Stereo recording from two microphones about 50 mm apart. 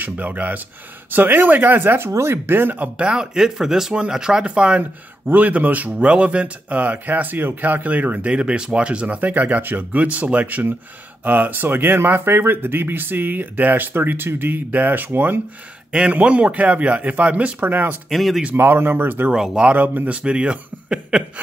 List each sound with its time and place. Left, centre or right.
0.0 s speech: right
3.0 s speech: centre
4.5 s a man's voice: right
9.2 s speech: right
15.9 s a man's voice: right
18.1 s speech: centre
18.6 s speech: right
19.3 s speech: centre
19.6 s speech: right
20.2 s a man's voice: right